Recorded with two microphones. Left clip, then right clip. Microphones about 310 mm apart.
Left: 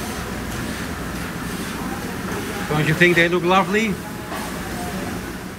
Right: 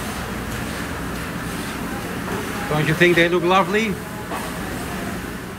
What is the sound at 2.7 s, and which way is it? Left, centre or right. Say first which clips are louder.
Speech: even; centre.